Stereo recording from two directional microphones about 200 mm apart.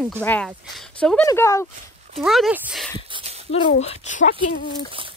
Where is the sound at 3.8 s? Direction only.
35° left (ahead or behind).